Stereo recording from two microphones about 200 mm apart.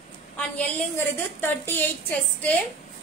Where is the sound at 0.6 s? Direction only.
10° left (ahead or behind).